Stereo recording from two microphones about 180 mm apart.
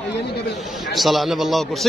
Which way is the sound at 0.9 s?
Centre (ahead or behind).